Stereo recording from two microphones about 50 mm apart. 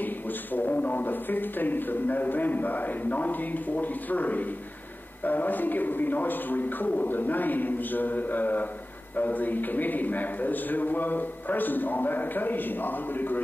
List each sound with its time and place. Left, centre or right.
0.0 s speech: left